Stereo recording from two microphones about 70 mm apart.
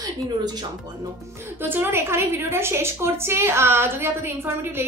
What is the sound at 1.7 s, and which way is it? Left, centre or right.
A woman's voice, right.